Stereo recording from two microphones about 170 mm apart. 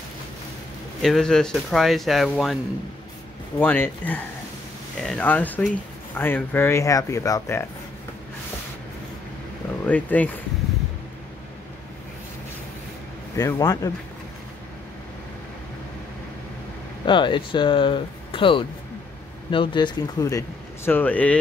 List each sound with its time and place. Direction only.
1.0 s speech: 5° left (ahead or behind)
3.5 s speech: 10° left (ahead or behind)
9.8 s speech: 10° left (ahead or behind)
13.4 s speech: 20° left (ahead or behind)
17.0 s speech: 30° left (ahead or behind); by 21.4 s 10° left (ahead or behind)